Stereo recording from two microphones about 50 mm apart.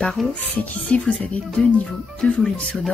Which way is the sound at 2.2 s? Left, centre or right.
Left.